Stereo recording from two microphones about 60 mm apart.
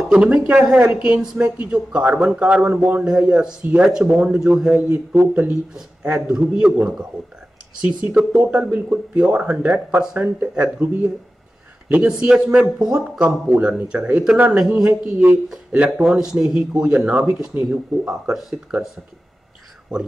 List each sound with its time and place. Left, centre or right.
0.1 s speech: centre
4.7 s speech: right
5.5 s speech: centre
16.1 s speech: centre